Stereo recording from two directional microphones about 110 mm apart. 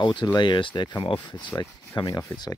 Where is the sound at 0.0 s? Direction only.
45° left (ahead or behind).